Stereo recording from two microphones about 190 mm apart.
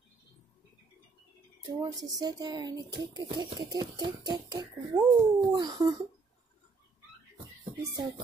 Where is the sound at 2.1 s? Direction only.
20° right (ahead or behind).